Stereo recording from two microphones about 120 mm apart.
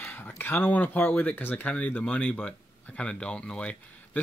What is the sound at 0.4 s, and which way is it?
Speech, 15° left (ahead or behind).